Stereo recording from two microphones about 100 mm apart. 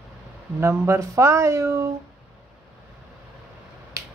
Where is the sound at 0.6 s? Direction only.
25° right (ahead or behind).